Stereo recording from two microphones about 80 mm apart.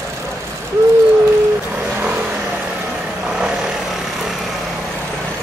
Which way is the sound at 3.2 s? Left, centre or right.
Centre.